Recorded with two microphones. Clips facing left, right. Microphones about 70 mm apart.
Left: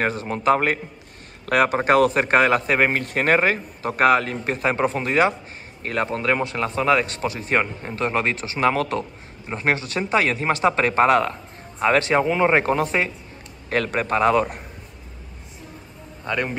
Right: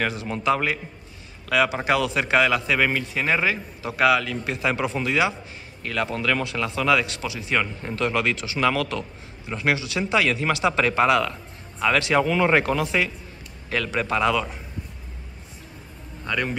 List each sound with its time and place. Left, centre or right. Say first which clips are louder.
0.0 s a man's voice: left 3 dB; left
12.2 s a man's voice: left 1 dB; left